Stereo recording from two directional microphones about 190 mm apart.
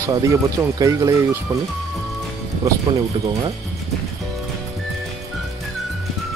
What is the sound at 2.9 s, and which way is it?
Speech, 25° right (ahead or behind).